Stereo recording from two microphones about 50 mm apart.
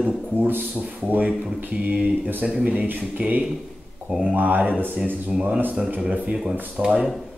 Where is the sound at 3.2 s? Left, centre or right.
Right.